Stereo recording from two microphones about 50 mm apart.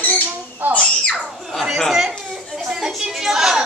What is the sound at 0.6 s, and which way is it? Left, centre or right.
Speech, right.